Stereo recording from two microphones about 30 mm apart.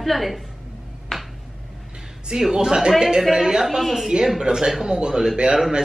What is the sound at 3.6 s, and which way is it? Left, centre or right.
Speech, centre.